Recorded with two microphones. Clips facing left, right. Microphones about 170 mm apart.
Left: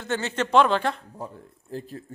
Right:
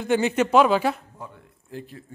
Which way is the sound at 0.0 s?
15° right (ahead or behind).